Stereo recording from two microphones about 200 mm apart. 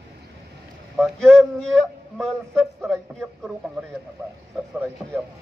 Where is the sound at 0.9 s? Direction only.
Centre (ahead or behind).